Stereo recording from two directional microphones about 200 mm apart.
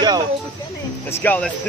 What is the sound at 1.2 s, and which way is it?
Speech, 10° left (ahead or behind).